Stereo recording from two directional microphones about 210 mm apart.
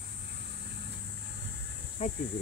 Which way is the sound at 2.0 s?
30° left (ahead or behind).